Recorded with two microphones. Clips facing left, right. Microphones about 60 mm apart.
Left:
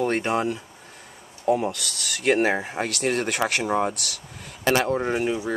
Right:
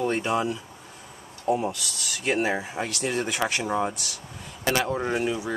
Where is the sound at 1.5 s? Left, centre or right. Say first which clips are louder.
Left 2 dB; left.